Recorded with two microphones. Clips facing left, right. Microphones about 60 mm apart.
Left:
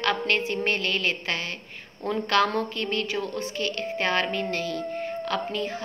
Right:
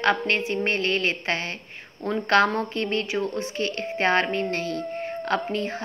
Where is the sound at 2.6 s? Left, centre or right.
Right.